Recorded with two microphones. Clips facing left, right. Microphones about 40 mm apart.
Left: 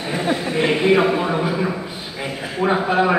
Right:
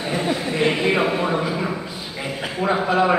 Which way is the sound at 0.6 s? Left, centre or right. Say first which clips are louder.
Left 4 dB; centre.